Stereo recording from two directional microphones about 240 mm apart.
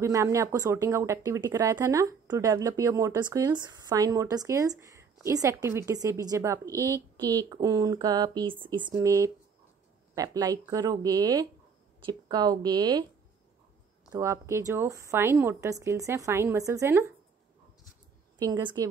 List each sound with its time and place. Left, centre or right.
0.0 s speech: centre
14.1 s speech: centre
18.4 s speech: centre